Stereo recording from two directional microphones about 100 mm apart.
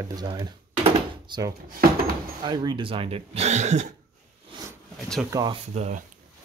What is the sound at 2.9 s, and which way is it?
Speech, 70° right (ahead or behind).